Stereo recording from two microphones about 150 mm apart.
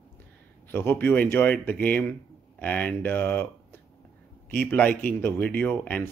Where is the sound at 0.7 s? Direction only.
15° left (ahead or behind).